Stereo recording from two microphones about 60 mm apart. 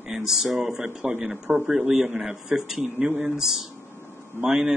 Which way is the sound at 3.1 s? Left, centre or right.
Right.